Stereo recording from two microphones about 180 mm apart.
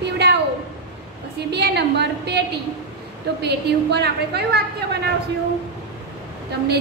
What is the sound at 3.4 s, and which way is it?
A woman's voice, 65° right (ahead or behind).